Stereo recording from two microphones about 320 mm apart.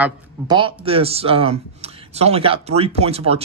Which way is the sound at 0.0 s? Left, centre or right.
Centre.